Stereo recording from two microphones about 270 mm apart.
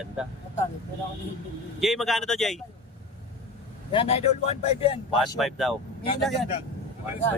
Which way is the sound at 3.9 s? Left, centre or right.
Left.